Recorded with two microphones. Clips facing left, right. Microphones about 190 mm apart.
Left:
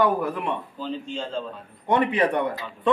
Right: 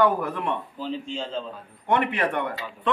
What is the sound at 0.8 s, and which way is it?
Speech, 5° right (ahead or behind).